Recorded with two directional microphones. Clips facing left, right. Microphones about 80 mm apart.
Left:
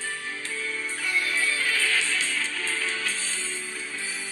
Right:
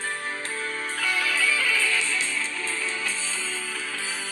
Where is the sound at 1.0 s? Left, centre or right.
Right.